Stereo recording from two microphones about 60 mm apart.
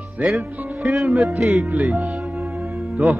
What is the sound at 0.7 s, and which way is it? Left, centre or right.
Music, centre.